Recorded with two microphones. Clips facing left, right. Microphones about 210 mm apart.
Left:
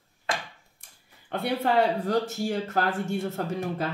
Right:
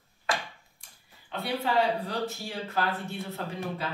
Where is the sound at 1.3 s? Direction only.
50° left (ahead or behind).